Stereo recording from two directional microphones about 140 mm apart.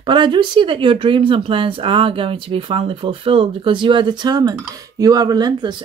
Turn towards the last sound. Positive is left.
turn(degrees=-30)  # may be behind; listen again after turning